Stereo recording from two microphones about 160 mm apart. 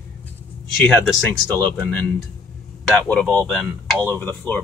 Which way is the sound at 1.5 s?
10° left (ahead or behind).